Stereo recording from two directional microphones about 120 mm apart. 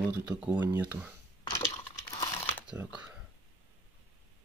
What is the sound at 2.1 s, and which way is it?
Crumpling, 45° left (ahead or behind).